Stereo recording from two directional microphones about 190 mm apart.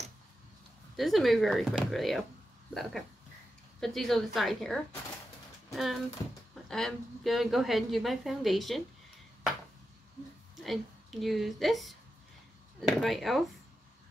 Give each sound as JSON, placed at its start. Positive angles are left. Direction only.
{"t": 0.9, "sound": "a woman's voice", "side_deg": 0}
{"t": 10.6, "sound": "a woman's voice", "side_deg": 0}